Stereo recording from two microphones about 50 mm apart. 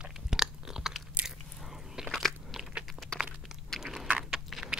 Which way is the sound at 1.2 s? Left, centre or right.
Centre.